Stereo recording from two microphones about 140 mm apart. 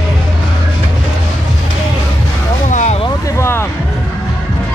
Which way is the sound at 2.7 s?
60° left (ahead or behind).